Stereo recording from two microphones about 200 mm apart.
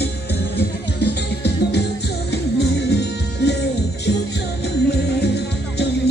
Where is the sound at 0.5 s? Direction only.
55° left (ahead or behind).